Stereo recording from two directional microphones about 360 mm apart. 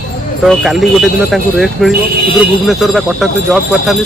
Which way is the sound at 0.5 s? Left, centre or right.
Centre.